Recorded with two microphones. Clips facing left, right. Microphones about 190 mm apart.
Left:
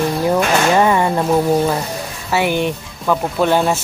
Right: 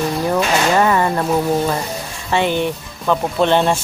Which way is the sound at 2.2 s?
10° left (ahead or behind).